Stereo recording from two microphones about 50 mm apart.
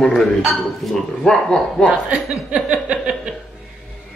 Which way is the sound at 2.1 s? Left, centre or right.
Right.